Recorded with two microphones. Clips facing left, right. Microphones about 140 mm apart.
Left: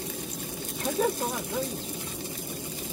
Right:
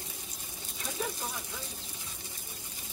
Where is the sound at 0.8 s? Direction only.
55° left (ahead or behind).